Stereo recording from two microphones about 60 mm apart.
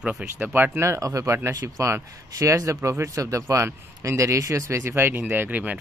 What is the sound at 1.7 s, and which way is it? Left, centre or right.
A man's voice, right.